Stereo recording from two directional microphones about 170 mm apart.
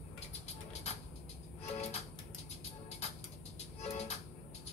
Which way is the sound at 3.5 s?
40° left (ahead or behind).